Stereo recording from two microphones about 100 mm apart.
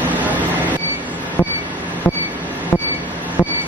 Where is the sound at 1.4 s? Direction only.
25° left (ahead or behind).